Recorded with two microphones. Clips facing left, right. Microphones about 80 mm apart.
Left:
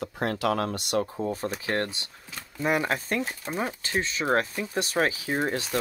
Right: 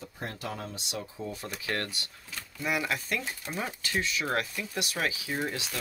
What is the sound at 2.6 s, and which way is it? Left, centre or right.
Speech, left.